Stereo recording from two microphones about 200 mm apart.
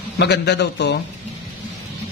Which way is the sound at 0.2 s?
55° left (ahead or behind).